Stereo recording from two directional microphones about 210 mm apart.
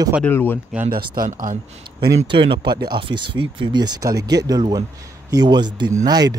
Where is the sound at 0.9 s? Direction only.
40° right (ahead or behind).